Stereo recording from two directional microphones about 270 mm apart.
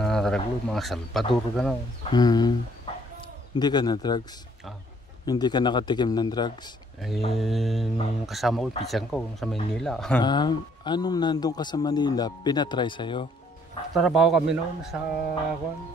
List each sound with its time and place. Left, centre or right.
0.0 s speech: centre
2.0 s speech: centre
5.2 s speech: centre
7.3 s speech: centre
10.2 s speech: centre
13.9 s speech: centre